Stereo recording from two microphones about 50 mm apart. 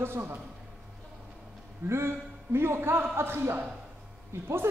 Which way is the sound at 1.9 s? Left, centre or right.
Right.